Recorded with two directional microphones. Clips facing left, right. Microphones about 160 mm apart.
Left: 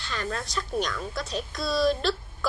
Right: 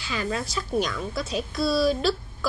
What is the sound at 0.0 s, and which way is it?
Speech, 5° right (ahead or behind).